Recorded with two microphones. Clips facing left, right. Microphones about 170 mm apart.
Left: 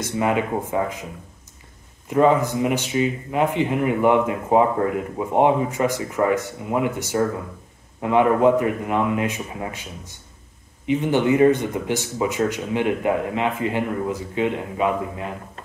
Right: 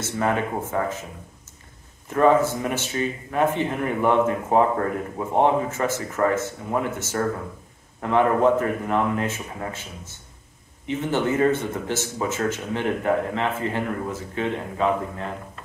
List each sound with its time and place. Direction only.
0.0 s speech: 15° left (ahead or behind)
2.0 s speech: 15° left (ahead or behind)